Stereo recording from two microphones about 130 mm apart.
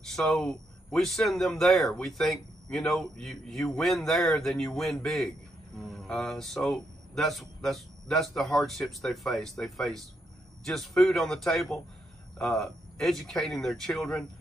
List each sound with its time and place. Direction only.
0.0 s speech: 5° left (ahead or behind)